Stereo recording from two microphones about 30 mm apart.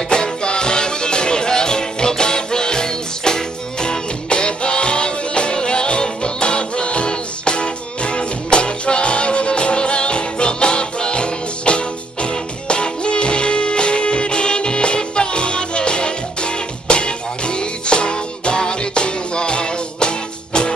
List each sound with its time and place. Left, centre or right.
0.1 s music: left